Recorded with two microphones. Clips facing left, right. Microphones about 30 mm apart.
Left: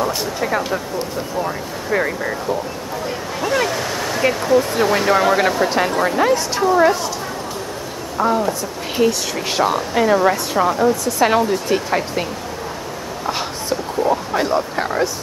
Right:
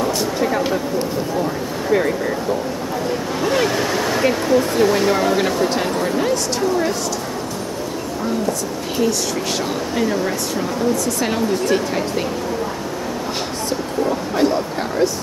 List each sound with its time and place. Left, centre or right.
0.0 s vehicle: centre
1.9 s speech: centre
3.3 s a sound: centre
4.2 s speech: centre
8.3 s speech: centre
14.4 s speech: centre